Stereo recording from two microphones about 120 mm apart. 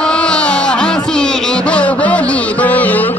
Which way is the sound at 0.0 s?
5° left (ahead or behind).